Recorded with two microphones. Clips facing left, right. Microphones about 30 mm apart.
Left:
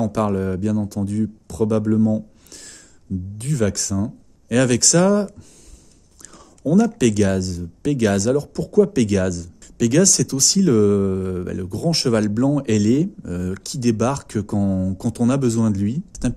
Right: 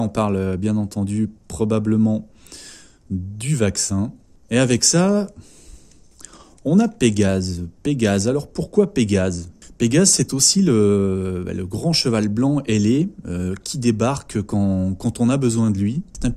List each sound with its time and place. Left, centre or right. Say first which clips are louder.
0.0 s speech: even; right
0.8 s speech: even; right
1.7 s speech: even; right; by 5.2 s centre
6.6 s speech: even; right
7.0 s speech: even; centre
7.8 s speech: even; centre
8.4 s speech: left 1 dB; right
10.0 s speech: even; right
13.9 s speech: even; right